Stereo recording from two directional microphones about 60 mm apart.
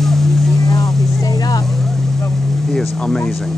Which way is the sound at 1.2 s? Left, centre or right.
Left.